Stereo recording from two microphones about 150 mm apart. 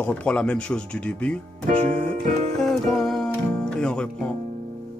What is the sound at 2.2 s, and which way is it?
Music, 55° right (ahead or behind).